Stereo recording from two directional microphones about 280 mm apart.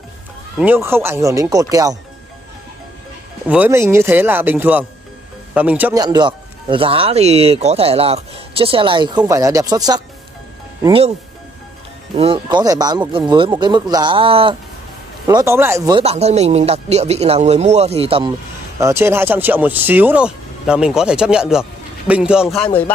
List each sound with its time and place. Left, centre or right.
0.6 s speech: centre
3.4 s speech: centre
6.0 s speech: centre
12.2 s speech: centre